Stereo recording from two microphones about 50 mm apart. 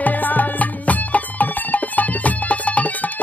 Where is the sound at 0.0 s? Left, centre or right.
Left.